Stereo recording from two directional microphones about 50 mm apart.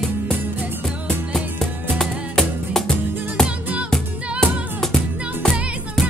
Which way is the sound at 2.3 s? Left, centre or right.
Centre.